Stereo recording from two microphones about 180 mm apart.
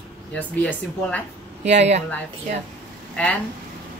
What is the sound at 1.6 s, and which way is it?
Speech, 40° right (ahead or behind).